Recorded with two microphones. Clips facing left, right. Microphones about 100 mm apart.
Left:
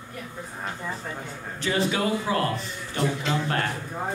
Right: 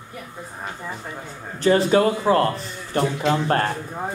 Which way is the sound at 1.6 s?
40° right (ahead or behind).